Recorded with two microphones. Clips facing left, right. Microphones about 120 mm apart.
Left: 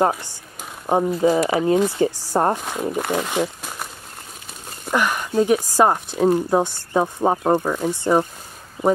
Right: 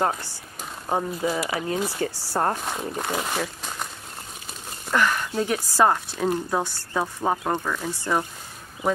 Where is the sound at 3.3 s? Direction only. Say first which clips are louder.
Left 5 dB; 15° left (ahead or behind).